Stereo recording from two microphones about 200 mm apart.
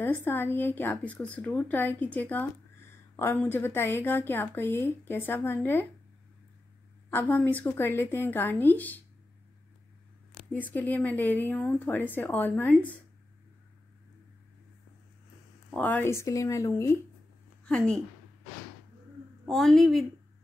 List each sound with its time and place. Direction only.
0.0 s a woman's voice: 10° left (ahead or behind)
7.1 s a woman's voice: 10° left (ahead or behind)
10.5 s a woman's voice: 10° left (ahead or behind)
15.7 s a woman's voice: 10° left (ahead or behind)
17.6 s a woman's voice: 5° left (ahead or behind)
19.4 s a woman's voice: centre (ahead or behind)